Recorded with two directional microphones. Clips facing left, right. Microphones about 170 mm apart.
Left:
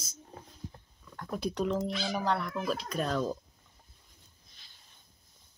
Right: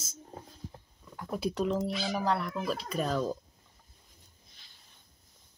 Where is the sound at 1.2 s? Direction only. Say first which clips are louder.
Right 1 dB; 5° right (ahead or behind).